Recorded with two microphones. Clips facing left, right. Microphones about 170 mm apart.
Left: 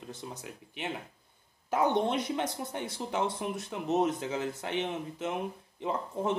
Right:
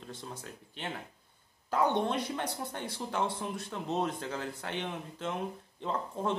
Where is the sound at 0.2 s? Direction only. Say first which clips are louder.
Left 2 dB; 15° left (ahead or behind).